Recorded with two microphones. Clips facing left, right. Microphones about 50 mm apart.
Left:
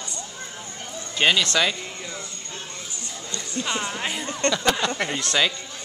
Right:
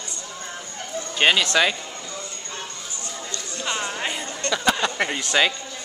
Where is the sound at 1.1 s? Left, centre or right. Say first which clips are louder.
Right 2 dB; centre.